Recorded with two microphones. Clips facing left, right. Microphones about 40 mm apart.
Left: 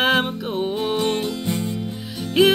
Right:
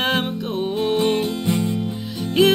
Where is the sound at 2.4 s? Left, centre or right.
Centre.